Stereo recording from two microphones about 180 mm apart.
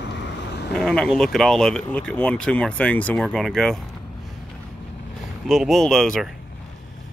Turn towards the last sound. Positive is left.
turn(degrees=0)  # may be behind; listen again after turning